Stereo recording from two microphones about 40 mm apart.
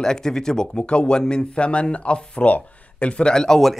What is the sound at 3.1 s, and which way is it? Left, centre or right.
Speech, left.